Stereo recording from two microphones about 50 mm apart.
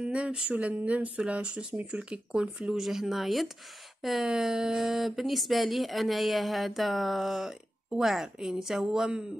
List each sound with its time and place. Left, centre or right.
0.0 s a sound: right
0.6 s speech: right
2.7 s speech: centre